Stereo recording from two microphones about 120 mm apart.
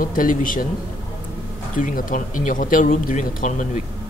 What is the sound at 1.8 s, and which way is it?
Speech, 90° left.